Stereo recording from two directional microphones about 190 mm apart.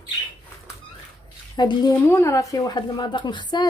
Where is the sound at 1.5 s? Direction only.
25° left (ahead or behind).